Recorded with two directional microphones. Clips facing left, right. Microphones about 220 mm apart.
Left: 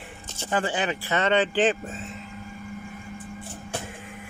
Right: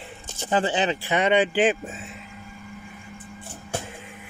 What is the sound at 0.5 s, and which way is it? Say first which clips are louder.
Speech: right 3 dB; 25° right (ahead or behind).